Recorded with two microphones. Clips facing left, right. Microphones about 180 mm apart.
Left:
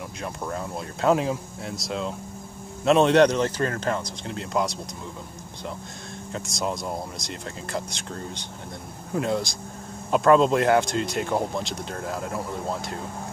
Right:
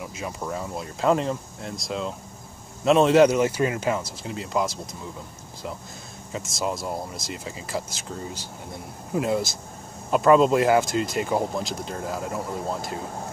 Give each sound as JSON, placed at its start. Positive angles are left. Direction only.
{"t": 0.2, "sound": "speech", "side_deg": 0}
{"t": 6.3, "sound": "speech", "side_deg": 0}